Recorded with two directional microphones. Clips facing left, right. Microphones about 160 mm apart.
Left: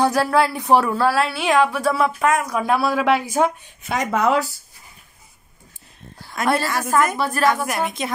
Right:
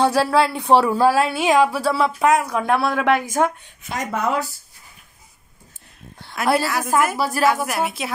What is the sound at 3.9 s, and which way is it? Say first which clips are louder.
Speech: left 4 dB; 90° left.